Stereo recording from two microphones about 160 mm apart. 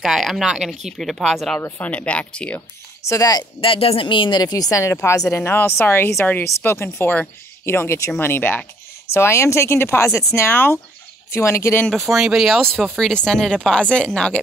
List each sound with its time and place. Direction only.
0.0 s speech: centre (ahead or behind)
3.0 s speech: 20° left (ahead or behind)
11.9 s speech: centre (ahead or behind)